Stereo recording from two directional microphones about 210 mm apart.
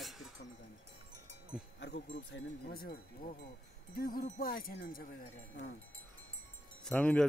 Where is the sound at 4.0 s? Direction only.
45° left (ahead or behind).